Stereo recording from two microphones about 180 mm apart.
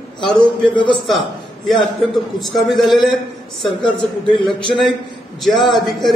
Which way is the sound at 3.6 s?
25° left (ahead or behind).